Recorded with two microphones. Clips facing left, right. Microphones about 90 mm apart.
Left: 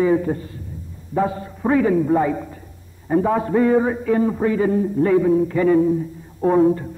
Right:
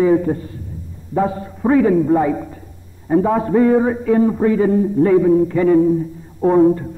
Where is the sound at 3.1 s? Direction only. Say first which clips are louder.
Right 3 dB; 10° right (ahead or behind).